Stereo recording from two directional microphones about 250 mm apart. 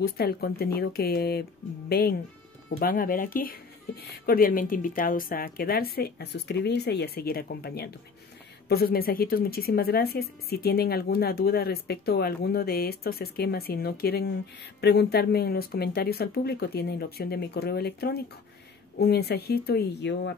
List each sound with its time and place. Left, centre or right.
0.0 s a woman's voice: left